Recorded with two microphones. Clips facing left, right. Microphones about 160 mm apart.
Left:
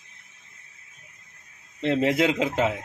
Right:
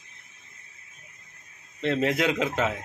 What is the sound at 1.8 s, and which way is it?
Speech, 25° left (ahead or behind).